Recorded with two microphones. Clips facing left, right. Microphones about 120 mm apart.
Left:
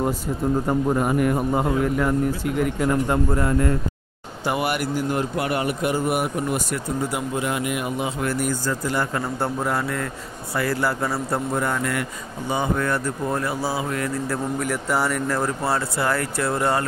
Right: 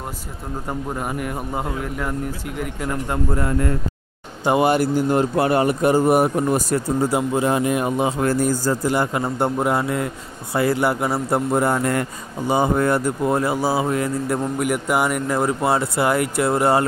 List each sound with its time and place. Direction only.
0.7 s a man's voice: centre (ahead or behind)
4.5 s speech: 25° right (ahead or behind)
8.9 s a man's voice: 20° right (ahead or behind)